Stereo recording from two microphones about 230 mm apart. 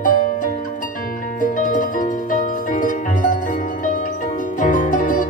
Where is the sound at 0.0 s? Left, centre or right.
Left.